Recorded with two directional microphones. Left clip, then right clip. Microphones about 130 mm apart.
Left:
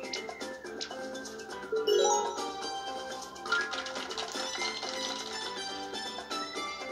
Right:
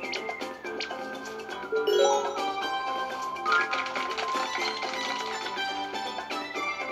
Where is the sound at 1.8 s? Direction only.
15° right (ahead or behind).